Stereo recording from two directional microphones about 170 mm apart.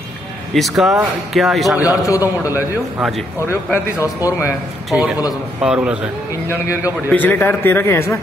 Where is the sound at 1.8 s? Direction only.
20° left (ahead or behind).